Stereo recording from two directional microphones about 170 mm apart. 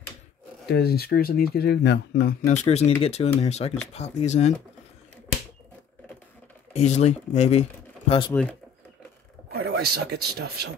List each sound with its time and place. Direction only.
0.7 s speech: 70° left (ahead or behind)
2.4 s speech: 40° left (ahead or behind)
6.7 s speech: 40° left (ahead or behind)
8.3 s speech: 10° left (ahead or behind)
9.5 s speech: 70° right (ahead or behind)